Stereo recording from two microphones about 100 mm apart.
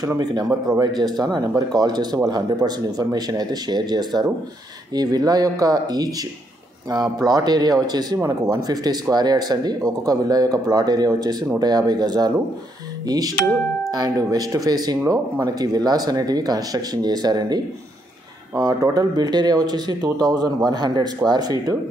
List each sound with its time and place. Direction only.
0.0 s speech: 40° right (ahead or behind)
7.2 s speech: 40° right (ahead or behind)
13.0 s music: 40° right (ahead or behind)
13.9 s speech: 40° right (ahead or behind)